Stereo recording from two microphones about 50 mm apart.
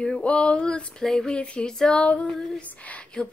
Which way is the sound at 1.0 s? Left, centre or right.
Centre.